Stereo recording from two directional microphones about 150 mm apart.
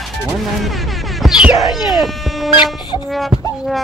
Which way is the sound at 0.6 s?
Centre (ahead or behind).